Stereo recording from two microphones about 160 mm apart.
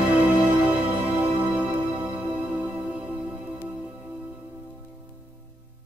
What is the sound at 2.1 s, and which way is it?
Music, 10° right (ahead or behind).